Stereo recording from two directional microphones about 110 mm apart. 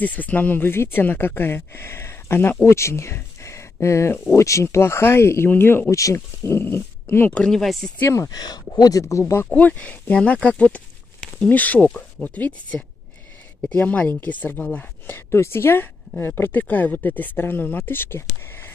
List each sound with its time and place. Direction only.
0.0 s speech: 15° left (ahead or behind)
7.3 s speech: 5° left (ahead or behind)
8.0 s speech: 25° left (ahead or behind)
9.5 s speech: 15° left (ahead or behind)